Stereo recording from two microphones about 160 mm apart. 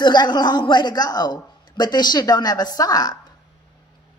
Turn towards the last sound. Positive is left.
turn(degrees=25)  # may be behind; listen again after turning